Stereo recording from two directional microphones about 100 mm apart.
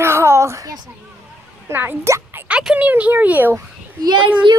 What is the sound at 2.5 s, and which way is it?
A woman's voice, 10° right (ahead or behind).